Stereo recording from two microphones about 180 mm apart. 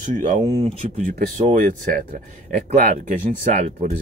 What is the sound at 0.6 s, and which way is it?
Speech, 45° right (ahead or behind).